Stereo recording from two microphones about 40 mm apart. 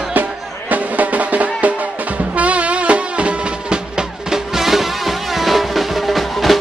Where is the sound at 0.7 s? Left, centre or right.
Right.